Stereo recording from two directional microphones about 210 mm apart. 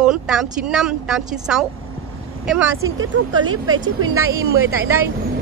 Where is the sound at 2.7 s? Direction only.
70° right (ahead or behind).